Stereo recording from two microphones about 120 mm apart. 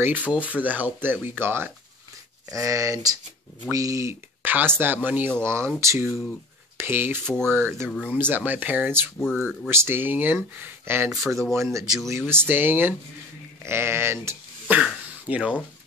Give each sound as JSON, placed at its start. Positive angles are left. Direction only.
{"t": 0.0, "sound": "speech", "side_deg": -15}
{"t": 11.1, "sound": "speech", "side_deg": 0}
{"t": 11.5, "sound": "speech", "side_deg": -25}
{"t": 11.8, "sound": "speech", "side_deg": -5}
{"t": 12.3, "sound": "speech", "side_deg": -20}
{"t": 14.8, "sound": "speech", "side_deg": -10}